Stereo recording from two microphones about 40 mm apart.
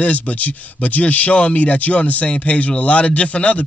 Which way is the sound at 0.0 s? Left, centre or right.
Left.